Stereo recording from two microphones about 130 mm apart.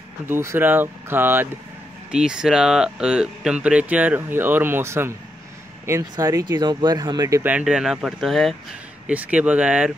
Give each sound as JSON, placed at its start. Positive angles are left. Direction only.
{"t": 0.3, "sound": "speech", "side_deg": -20}
{"t": 2.0, "sound": "speech", "side_deg": -5}
{"t": 7.4, "sound": "speech", "side_deg": -10}
{"t": 9.0, "sound": "speech", "side_deg": -10}